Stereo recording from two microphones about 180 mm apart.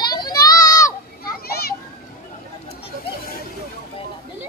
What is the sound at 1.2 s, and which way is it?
Children playing, 60° left (ahead or behind).